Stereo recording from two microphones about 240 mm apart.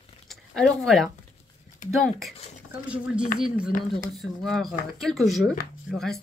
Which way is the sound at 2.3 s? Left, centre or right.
Left.